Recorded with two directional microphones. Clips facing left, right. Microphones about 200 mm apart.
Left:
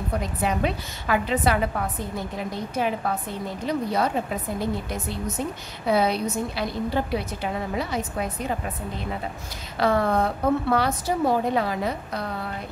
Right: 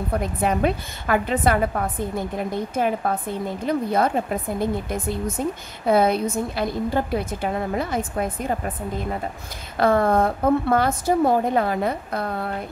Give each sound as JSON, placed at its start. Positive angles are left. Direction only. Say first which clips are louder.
{"t": 0.2, "sound": "a woman's voice", "louder": "right 4 dB", "side_deg": -50}
{"t": 9.8, "sound": "a woman's voice", "louder": "right 3 dB", "side_deg": -50}